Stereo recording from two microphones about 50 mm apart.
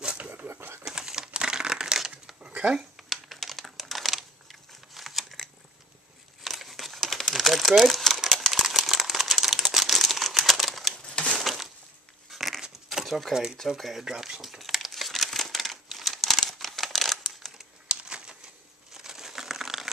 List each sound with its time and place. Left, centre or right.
0.0 s pigeon: centre
0.3 s pigeon: right
0.8 s crumpling: centre
2.4 s a sound: right
3.0 s typing: centre
6.4 s crumpling: centre
11.1 s crumpling: left
11.3 s a sound: centre
12.3 s dog: centre
13.0 s speech: centre
14.0 s crumpling: centre
17.8 s a sound: centre
18.9 s crumpling: centre